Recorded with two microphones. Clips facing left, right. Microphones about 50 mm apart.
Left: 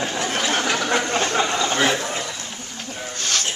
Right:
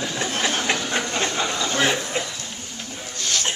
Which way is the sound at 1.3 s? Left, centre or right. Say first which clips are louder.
Left 3 dB; left.